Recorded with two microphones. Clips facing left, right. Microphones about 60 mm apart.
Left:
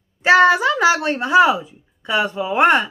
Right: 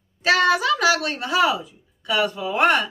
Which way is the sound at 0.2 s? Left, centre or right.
Left.